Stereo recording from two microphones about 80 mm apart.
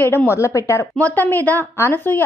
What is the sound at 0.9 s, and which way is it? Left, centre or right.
A woman's voice, left.